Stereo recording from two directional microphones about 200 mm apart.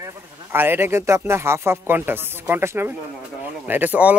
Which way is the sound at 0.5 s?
10° right (ahead or behind).